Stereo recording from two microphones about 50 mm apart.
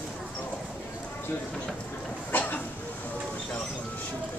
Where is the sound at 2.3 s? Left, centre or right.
Left.